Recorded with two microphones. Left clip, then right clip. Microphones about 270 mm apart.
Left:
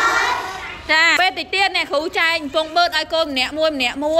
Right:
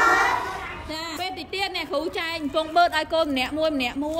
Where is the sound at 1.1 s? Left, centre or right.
Centre.